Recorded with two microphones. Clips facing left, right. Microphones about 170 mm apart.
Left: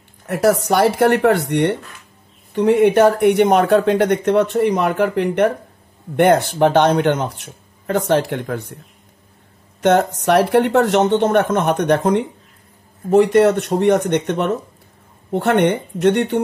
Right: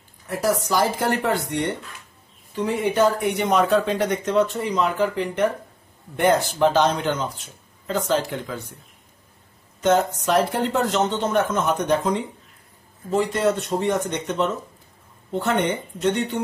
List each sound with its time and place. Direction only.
0.3 s speech: 70° left (ahead or behind)
9.8 s speech: 65° left (ahead or behind)